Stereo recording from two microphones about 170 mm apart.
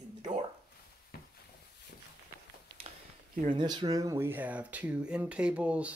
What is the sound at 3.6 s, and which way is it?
Speech, 25° right (ahead or behind).